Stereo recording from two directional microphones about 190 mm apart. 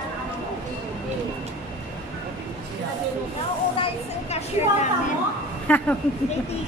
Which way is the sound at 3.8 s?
35° left (ahead or behind).